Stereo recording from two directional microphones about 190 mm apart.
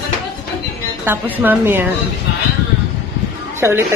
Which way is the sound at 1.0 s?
10° right (ahead or behind).